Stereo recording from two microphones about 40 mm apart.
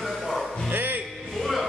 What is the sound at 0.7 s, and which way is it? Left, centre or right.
Music, right.